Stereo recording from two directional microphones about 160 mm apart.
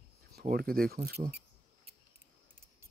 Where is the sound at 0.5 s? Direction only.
70° right (ahead or behind).